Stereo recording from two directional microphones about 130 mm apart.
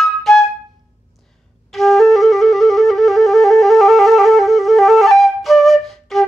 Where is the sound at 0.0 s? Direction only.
Centre (ahead or behind).